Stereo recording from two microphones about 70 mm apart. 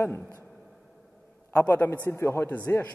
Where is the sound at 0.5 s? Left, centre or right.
Centre.